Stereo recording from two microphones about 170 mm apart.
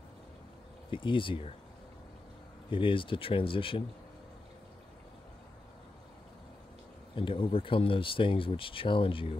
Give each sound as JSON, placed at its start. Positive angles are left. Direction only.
{"t": 0.8, "sound": "speech", "side_deg": 30}
{"t": 2.7, "sound": "speech", "side_deg": 30}
{"t": 7.2, "sound": "speech", "side_deg": 30}